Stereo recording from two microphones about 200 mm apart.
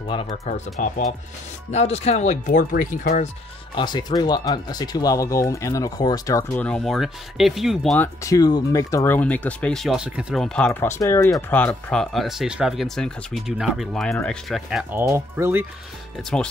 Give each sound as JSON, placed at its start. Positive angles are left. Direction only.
{"t": 0.1, "sound": "speech", "side_deg": 30}
{"t": 0.7, "sound": "speech", "side_deg": 40}
{"t": 3.7, "sound": "speech", "side_deg": 20}
{"t": 6.5, "sound": "speech", "side_deg": 5}
{"t": 8.2, "sound": "speech", "side_deg": 15}
{"t": 16.2, "sound": "speech", "side_deg": 0}